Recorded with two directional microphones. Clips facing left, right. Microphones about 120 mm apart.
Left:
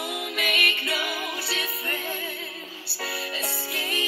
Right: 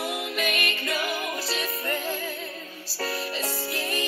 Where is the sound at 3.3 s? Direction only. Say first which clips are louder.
Right 2 dB; centre (ahead or behind).